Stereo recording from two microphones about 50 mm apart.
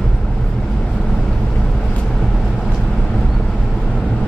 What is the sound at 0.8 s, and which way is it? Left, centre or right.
Vehicle, centre.